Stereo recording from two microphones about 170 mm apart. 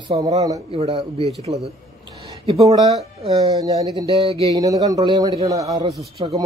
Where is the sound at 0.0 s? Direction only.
25° right (ahead or behind).